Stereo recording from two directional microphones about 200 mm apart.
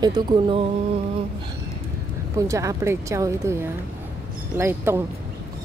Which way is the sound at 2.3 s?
15° right (ahead or behind).